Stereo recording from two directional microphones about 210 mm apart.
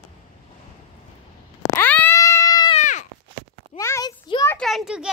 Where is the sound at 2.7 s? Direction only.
35° left (ahead or behind).